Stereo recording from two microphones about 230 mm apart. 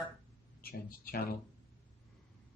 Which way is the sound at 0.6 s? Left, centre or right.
Left.